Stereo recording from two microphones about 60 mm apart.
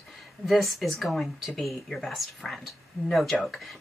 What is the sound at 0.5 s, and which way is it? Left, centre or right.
A woman's voice, centre.